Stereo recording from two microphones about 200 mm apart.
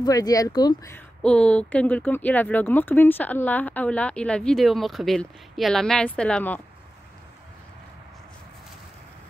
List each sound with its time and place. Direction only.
0.0 s speech: 20° left (ahead or behind)
0.9 s speech: 5° left (ahead or behind)